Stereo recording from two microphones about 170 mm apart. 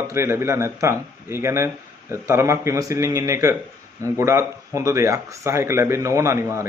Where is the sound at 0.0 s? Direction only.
15° right (ahead or behind).